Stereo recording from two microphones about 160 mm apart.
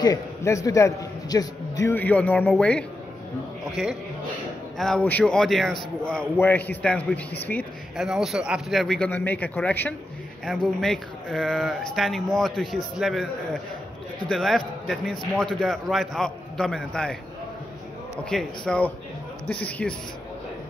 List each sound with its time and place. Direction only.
0.0 s a man's voice: 20° left (ahead or behind)
4.7 s a man's voice: 5° left (ahead or behind)
8.0 s speech: centre (ahead or behind)
18.3 s speech: centre (ahead or behind)
19.5 s a man's voice: 5° left (ahead or behind)